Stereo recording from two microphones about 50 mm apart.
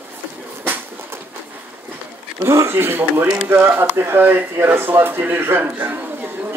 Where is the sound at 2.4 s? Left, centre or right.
Right.